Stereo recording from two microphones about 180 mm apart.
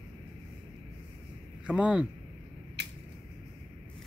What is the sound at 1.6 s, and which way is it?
Speech, 5° right (ahead or behind).